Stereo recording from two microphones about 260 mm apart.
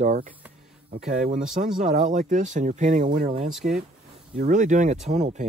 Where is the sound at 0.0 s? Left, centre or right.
Right.